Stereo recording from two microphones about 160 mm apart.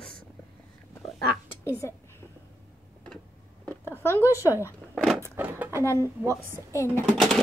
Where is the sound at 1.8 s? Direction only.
15° left (ahead or behind).